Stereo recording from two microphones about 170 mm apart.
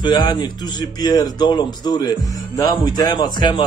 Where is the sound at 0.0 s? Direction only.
25° left (ahead or behind).